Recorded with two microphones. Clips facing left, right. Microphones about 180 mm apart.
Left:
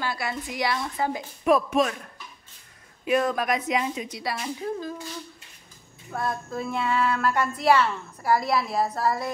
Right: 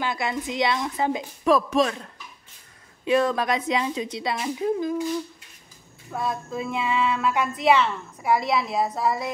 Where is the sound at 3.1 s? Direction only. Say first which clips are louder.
Right 2 dB; 30° right (ahead or behind).